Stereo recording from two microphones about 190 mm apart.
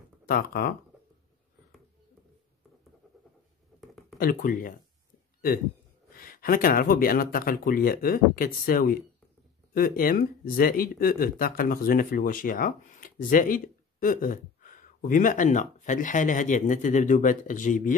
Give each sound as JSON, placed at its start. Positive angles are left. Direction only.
{"t": 0.3, "sound": "speech", "side_deg": 50}
{"t": 3.8, "sound": "a sound", "side_deg": 0}
{"t": 4.2, "sound": "speech", "side_deg": 45}
{"t": 6.1, "sound": "speech", "side_deg": 50}